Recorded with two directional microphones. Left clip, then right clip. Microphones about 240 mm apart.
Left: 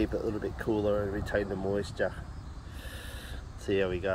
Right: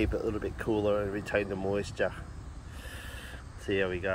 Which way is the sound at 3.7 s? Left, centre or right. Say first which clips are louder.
Left 1 dB; centre.